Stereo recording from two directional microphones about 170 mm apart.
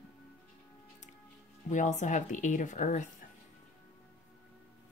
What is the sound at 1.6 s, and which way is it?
Speech, 45° left (ahead or behind).